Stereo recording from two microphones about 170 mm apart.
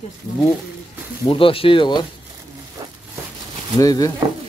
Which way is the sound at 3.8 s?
20° left (ahead or behind).